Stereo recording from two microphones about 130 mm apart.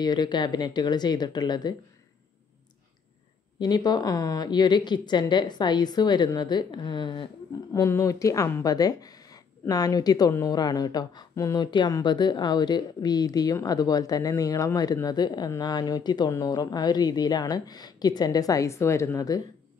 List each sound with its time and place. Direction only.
0.0 s speech: 35° left (ahead or behind)
3.5 s speech: 35° left (ahead or behind)
7.7 s speech: 25° left (ahead or behind)